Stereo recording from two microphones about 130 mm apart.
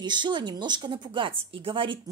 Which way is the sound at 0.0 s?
35° right (ahead or behind).